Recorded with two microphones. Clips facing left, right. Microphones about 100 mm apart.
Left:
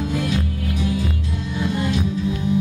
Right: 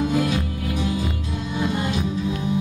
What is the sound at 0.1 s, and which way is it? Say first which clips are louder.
Music: right 2 dB; 10° right (ahead or behind).